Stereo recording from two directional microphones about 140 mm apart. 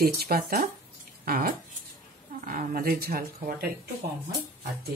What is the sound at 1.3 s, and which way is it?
Speech, 75° right (ahead or behind).